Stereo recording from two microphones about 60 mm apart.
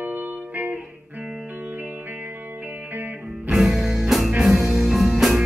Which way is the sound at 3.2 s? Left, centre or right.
Centre.